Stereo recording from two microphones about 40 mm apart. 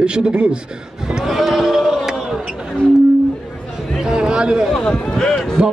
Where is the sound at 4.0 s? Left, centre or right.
Right.